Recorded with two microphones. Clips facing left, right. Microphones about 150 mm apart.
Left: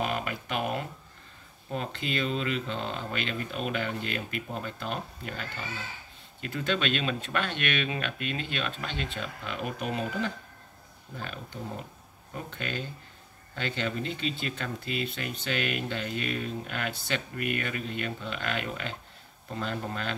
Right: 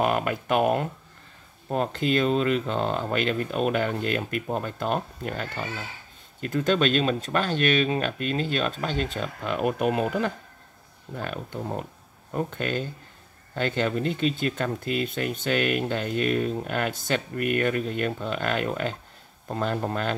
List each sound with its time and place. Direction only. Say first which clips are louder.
0.0 s speech: right 7 dB; 50° right (ahead or behind)